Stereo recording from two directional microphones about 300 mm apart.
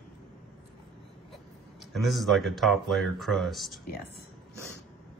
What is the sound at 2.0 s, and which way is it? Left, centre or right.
Speech, centre.